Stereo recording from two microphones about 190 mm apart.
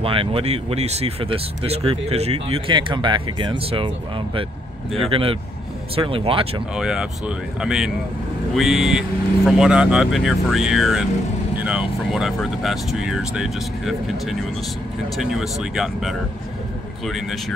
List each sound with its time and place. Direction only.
0.0 s speech: 30° right (ahead or behind)
5.1 s speech: 30° right (ahead or behind)
6.7 s speech: 5° right (ahead or behind)